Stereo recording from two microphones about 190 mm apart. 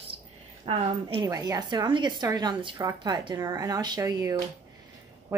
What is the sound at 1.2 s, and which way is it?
A woman's voice, 20° right (ahead or behind).